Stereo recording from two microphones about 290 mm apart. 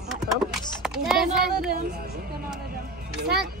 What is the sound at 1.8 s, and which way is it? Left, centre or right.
Speech, right.